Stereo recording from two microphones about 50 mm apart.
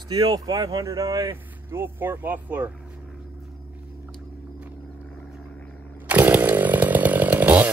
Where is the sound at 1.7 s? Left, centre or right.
Right.